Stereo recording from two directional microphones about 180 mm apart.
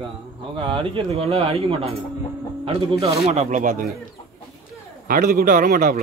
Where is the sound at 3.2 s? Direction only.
35° right (ahead or behind).